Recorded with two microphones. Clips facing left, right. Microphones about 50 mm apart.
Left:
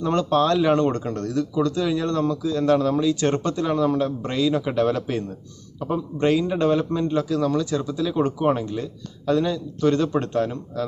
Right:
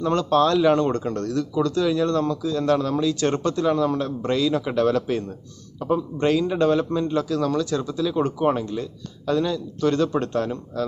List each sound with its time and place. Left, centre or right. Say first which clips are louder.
0.0 s speech: right 1 dB; left
0.9 s a man's voice: even; left